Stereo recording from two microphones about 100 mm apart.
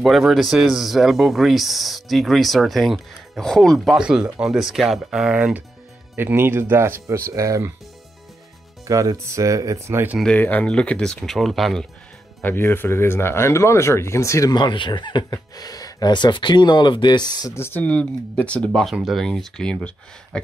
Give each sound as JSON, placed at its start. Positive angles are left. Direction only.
{"t": 0.0, "sound": "speech", "side_deg": 0}
{"t": 8.8, "sound": "speech", "side_deg": -35}
{"t": 10.3, "sound": "speech", "side_deg": 15}
{"t": 12.4, "sound": "speech", "side_deg": 20}
{"t": 14.5, "sound": "speech", "side_deg": 50}
{"t": 15.2, "sound": "speech", "side_deg": 40}
{"t": 17.6, "sound": "speech", "side_deg": 20}
{"t": 18.7, "sound": "speech", "side_deg": 0}